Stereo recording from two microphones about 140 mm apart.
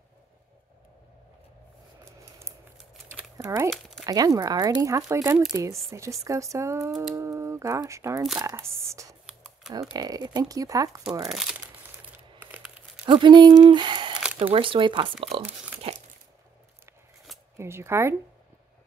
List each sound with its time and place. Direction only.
2.0 s scissors: 20° right (ahead or behind)
3.1 s crumpling: 20° right (ahead or behind)
4.0 s speech: 25° right (ahead or behind)
9.9 s speech: 30° right (ahead or behind)
11.2 s crumpling: centre (ahead or behind)
12.4 s crumpling: 10° right (ahead or behind)
13.0 s speech: 35° right (ahead or behind)
15.8 s a sound: 45° right (ahead or behind)
17.6 s speech: 20° right (ahead or behind)